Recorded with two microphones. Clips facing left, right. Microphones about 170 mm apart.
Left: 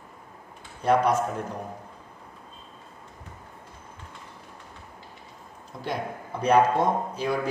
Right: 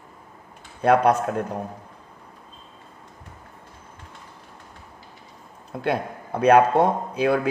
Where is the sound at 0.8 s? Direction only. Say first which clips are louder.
Right 4 dB; 60° right (ahead or behind).